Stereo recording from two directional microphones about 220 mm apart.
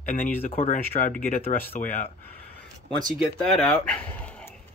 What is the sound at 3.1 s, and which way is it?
Speech, centre (ahead or behind).